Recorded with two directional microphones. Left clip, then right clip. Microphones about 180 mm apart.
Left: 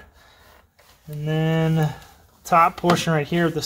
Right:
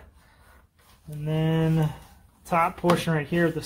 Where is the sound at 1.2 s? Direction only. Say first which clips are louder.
Left 4 dB; 50° left (ahead or behind).